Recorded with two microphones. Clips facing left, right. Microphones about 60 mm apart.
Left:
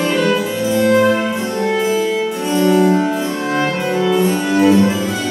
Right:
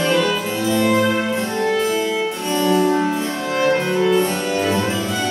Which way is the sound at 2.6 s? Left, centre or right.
Left.